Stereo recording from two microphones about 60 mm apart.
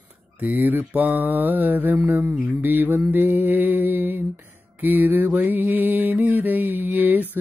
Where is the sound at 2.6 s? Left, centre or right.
Right.